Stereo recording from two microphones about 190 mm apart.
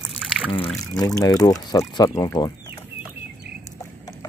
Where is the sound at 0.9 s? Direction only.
20° left (ahead or behind).